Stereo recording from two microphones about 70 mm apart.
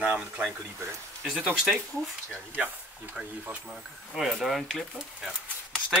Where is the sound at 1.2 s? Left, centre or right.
Centre.